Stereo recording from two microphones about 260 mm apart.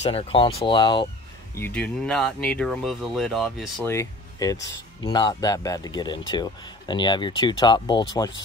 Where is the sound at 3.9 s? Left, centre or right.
Centre.